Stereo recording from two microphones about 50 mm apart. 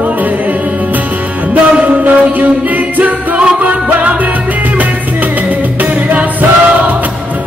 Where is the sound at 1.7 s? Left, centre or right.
Right.